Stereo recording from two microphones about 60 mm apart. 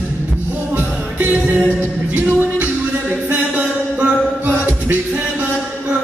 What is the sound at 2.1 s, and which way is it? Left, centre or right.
Music, right.